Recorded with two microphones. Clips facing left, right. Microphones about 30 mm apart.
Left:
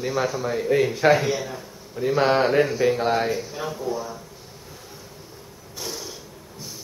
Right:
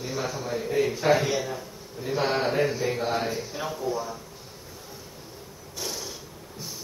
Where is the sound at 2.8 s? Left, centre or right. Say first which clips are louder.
Left 7 dB; left.